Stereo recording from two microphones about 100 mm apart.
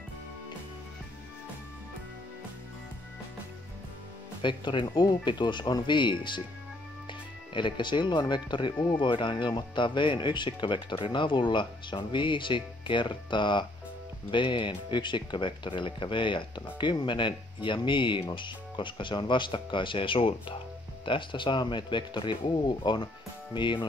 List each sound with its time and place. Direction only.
4.4 s speech: 55° left (ahead or behind)
8.7 s speech: 15° left (ahead or behind)
9.0 s speech: 55° left (ahead or behind)